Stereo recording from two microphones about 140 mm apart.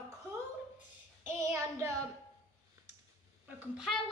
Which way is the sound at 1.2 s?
20° right (ahead or behind).